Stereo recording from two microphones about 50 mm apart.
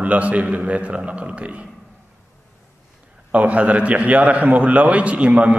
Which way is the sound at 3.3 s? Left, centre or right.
Right.